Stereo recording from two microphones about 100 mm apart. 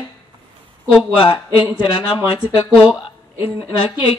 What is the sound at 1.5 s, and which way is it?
Speech, 50° left (ahead or behind).